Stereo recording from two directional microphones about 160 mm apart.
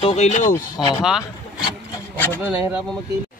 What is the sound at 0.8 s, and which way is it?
Speech, 25° left (ahead or behind).